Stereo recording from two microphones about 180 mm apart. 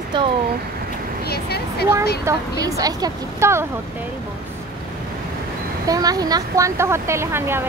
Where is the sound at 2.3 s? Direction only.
15° right (ahead or behind).